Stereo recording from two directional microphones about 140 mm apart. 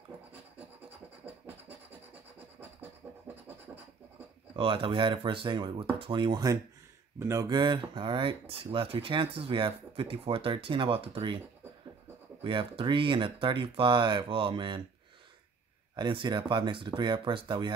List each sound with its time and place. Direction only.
1.2 s scratch: 15° right (ahead or behind)
4.6 s speech: 40° right (ahead or behind)
12.4 s speech: 35° right (ahead or behind)
16.0 s speech: 35° right (ahead or behind)